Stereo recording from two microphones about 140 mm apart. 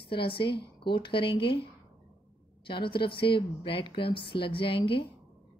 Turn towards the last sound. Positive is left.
turn(degrees=40)  # may be behind; listen again after turning